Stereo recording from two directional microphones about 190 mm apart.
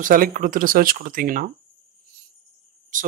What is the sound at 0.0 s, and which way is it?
Speech, 45° right (ahead or behind).